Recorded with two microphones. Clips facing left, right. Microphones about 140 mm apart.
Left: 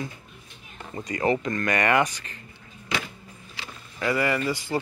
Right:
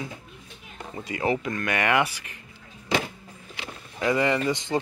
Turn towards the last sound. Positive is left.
turn(degrees=-20)  # may be behind; listen again after turning